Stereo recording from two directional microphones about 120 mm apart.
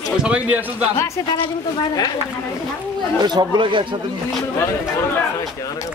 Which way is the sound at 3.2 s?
35° right (ahead or behind).